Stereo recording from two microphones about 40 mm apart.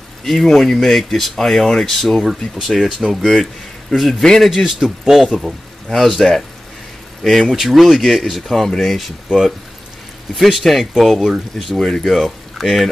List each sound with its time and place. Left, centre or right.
0.2 s speech: centre
4.2 s speech: centre
4.6 s speech: centre
5.9 s speech: centre
10.3 s speech: centre
11.7 s speech: centre
12.1 s speech: centre